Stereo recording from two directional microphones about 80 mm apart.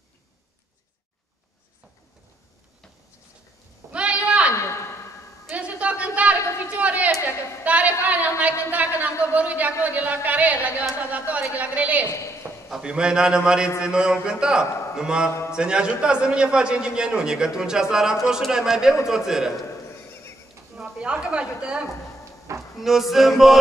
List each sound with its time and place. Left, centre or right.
3.9 s a sound: centre
9.3 s a man's voice: centre
12.1 s a man's voice: left
12.6 s a man's voice: centre
19.0 s music: centre
20.7 s a woman's voice: centre
22.8 s music: centre